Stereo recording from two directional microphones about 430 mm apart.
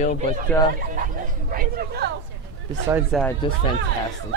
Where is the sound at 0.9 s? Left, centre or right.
Centre.